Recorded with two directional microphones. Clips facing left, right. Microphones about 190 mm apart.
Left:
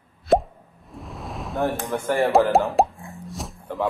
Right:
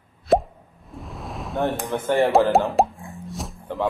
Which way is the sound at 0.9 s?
Centre (ahead or behind).